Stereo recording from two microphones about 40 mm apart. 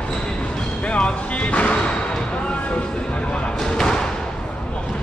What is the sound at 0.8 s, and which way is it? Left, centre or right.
Music, left.